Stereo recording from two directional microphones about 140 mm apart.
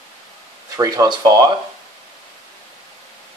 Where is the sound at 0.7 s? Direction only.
25° right (ahead or behind).